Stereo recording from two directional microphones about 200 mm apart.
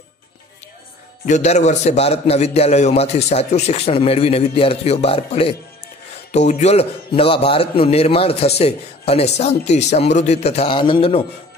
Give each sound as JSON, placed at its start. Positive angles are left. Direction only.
{"t": 1.2, "sound": "a man's voice", "side_deg": 35}